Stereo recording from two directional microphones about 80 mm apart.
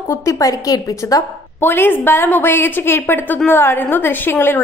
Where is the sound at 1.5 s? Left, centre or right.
Left.